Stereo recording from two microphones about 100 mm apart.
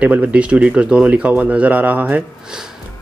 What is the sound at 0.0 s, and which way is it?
Speech, 15° right (ahead or behind).